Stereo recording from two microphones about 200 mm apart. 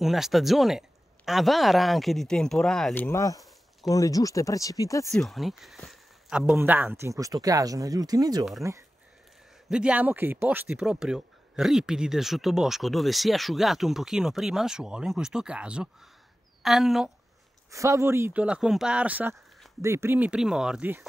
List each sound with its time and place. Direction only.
0.0 s speech: centre (ahead or behind); by 5.1 s 15° left (ahead or behind)
5.1 s speech: centre (ahead or behind); by 8.5 s 20° right (ahead or behind)
9.7 s speech: 5° right (ahead or behind)
17.6 s speech: 15° right (ahead or behind)